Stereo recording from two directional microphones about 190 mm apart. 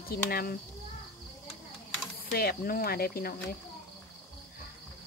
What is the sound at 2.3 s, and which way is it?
Speech, 55° left (ahead or behind).